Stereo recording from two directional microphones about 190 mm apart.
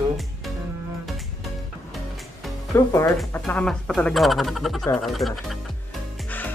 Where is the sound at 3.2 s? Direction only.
5° left (ahead or behind).